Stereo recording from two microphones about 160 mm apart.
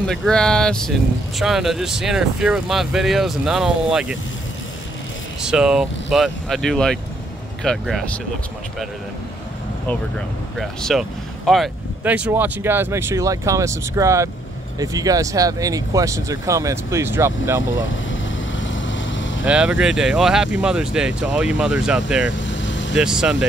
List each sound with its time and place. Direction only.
0.0 s speech: centre (ahead or behind)
5.4 s speech: 5° right (ahead or behind)
9.8 s speech: 5° left (ahead or behind)
12.0 s speech: 10° right (ahead or behind)
19.4 s speech: 5° right (ahead or behind)